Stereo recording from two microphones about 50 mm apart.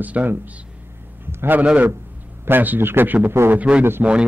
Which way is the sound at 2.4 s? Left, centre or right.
Right.